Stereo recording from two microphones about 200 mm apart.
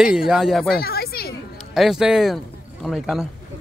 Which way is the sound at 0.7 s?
50° left (ahead or behind).